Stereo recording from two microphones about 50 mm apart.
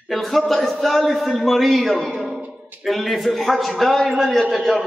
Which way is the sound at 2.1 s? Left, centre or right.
Right.